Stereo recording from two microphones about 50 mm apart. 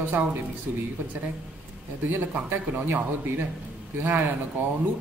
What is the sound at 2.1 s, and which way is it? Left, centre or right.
Speech, right.